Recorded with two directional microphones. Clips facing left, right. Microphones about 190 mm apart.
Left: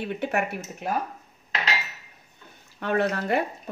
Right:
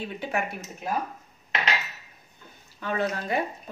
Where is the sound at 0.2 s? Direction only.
65° left (ahead or behind).